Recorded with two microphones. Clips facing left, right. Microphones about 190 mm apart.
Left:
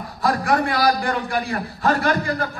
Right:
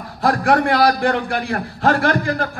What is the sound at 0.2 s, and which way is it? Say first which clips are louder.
A man's voice: right 4 dB; 65° right (ahead or behind).